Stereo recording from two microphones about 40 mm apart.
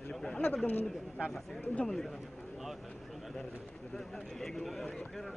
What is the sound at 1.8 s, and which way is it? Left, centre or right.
Speech, centre.